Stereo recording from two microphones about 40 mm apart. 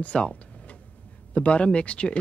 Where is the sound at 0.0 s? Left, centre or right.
Left.